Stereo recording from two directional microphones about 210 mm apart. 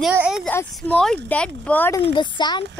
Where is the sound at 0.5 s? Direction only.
5° left (ahead or behind).